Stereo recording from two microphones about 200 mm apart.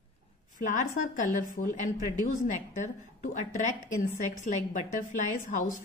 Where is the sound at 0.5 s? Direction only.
40° left (ahead or behind).